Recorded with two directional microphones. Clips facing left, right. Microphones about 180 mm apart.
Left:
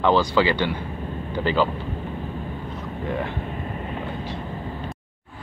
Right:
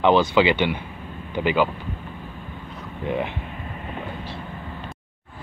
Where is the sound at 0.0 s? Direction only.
20° right (ahead or behind).